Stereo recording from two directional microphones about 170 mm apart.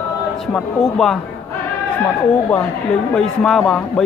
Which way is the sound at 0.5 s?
5° left (ahead or behind).